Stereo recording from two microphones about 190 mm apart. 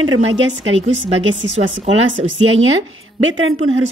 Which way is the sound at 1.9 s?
90° right.